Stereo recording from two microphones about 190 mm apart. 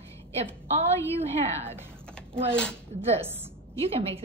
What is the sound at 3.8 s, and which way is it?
Speech, 30° right (ahead or behind).